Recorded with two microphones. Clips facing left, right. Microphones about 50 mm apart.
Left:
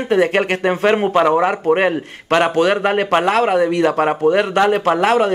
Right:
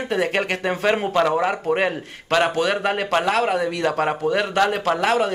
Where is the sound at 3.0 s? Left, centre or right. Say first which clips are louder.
Left 3 dB; left.